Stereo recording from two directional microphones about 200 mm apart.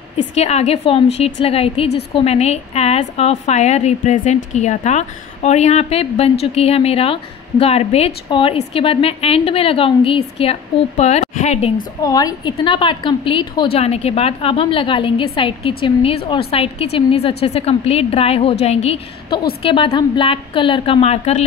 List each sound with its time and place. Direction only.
0.3 s a woman's voice: 30° left (ahead or behind)
12.0 s a woman's voice: 20° left (ahead or behind)